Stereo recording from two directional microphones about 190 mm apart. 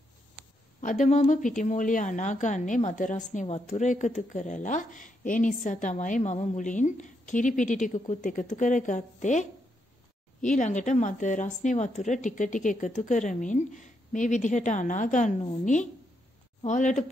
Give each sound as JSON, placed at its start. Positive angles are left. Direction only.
{"t": 0.7, "sound": "a woman's voice", "side_deg": 40}